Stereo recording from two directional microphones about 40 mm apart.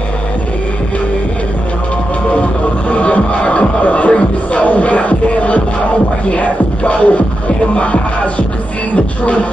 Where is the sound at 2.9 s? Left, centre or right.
Left.